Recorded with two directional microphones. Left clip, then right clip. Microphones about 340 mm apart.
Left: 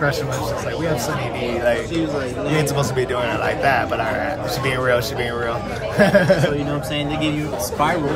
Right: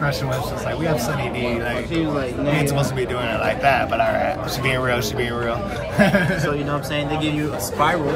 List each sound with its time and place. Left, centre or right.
2.5 s a man's voice: centre